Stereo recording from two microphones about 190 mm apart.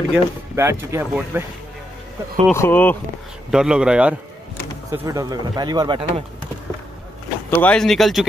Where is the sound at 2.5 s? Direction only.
10° left (ahead or behind).